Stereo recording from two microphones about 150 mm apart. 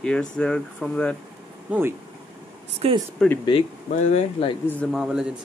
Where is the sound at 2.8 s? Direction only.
40° right (ahead or behind).